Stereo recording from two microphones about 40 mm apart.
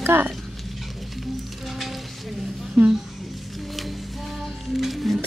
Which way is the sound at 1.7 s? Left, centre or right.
Centre.